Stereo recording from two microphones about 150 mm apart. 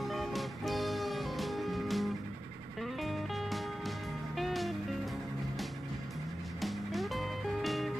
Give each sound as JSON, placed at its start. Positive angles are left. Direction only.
{"t": 0.0, "sound": "music", "side_deg": 0}
{"t": 6.6, "sound": "music", "side_deg": 0}